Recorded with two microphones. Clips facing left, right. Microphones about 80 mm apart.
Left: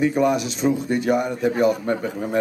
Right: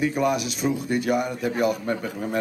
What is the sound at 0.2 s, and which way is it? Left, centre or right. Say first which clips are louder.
Speech: left 4 dB; centre.